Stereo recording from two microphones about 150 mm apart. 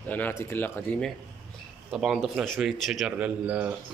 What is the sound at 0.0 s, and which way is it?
Speech, 10° left (ahead or behind).